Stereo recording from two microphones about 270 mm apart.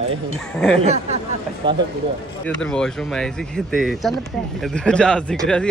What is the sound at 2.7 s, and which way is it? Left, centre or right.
Speech, centre.